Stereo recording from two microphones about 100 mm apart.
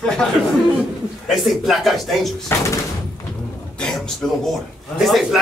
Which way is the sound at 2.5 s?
20° left (ahead or behind).